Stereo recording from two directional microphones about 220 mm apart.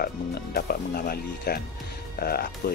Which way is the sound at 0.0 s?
45° left (ahead or behind).